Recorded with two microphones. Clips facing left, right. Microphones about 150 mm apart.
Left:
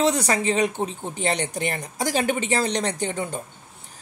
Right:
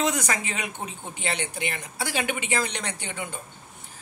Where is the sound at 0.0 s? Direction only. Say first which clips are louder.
Left 5 dB; 35° left (ahead or behind).